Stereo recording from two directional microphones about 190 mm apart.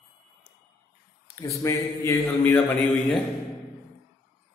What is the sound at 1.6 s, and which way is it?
Mantra, 15° left (ahead or behind).